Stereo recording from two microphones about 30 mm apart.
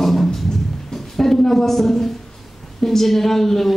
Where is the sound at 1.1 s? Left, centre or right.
Centre.